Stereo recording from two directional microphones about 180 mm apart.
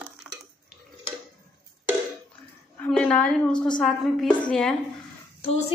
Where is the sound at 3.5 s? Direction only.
25° left (ahead or behind).